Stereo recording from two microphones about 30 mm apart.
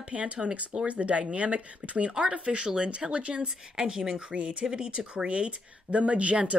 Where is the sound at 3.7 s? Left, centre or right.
Right.